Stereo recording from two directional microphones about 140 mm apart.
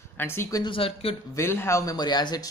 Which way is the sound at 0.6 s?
40° left (ahead or behind).